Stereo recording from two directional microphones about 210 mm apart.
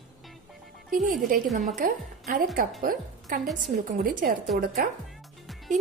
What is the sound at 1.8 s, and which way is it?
A woman's voice, 40° right (ahead or behind).